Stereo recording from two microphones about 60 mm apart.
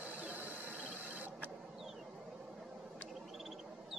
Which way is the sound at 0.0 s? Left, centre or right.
Right.